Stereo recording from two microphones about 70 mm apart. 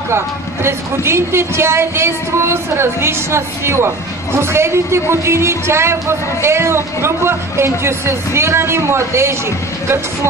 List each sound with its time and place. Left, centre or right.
0.7 s speech: right